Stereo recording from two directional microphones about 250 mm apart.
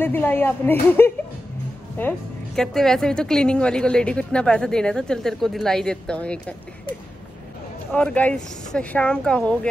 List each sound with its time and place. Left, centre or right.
0.0 s a woman's voice: centre
7.9 s a woman's voice: centre